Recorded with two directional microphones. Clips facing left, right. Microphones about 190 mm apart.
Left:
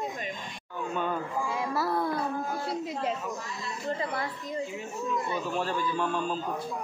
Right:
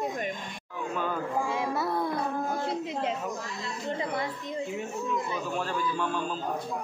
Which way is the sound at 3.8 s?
20° right (ahead or behind).